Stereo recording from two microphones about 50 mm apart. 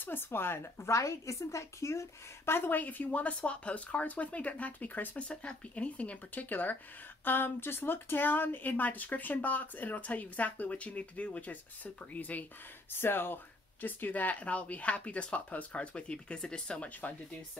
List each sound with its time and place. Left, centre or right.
0.0 s speech: left
5.3 s speech: left
13.0 s speech: left; by 16.9 s centre